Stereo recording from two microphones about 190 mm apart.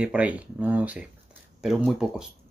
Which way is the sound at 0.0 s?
5° right (ahead or behind).